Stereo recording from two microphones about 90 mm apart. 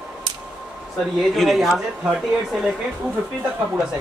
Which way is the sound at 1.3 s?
Centre (ahead or behind).